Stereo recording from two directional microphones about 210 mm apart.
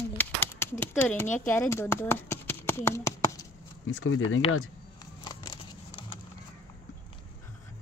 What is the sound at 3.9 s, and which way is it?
Speech, 75° left (ahead or behind).